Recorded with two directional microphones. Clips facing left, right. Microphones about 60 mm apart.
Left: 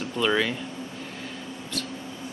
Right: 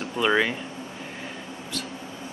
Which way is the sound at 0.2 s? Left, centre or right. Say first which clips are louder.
Right 2 dB; centre.